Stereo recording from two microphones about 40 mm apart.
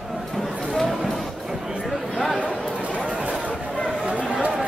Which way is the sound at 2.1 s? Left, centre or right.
Centre.